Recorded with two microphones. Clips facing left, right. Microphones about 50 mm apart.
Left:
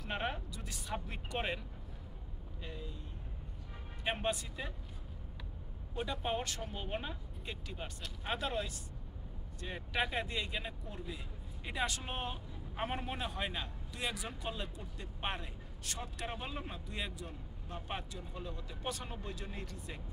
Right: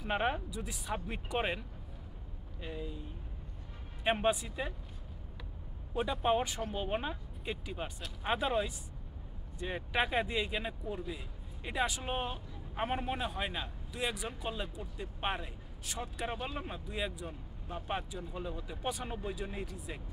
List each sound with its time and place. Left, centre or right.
0.0 s speech: centre
2.6 s speech: centre
4.0 s speech: centre
5.9 s speech: centre